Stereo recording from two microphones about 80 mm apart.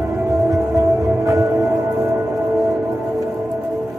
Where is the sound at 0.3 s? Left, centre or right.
Right.